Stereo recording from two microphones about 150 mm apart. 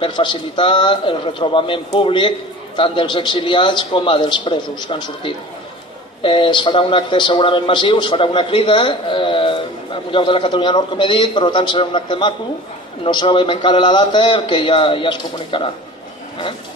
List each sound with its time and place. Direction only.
0.0 s a man's voice: 35° left (ahead or behind)